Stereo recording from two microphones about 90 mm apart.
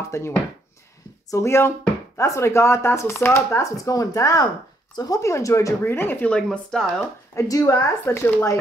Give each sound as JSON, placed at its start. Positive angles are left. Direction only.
{"t": 0.1, "sound": "speech", "side_deg": 30}
{"t": 5.9, "sound": "speech", "side_deg": 25}
{"t": 6.3, "sound": "speech", "side_deg": 10}
{"t": 7.3, "sound": "speech", "side_deg": 40}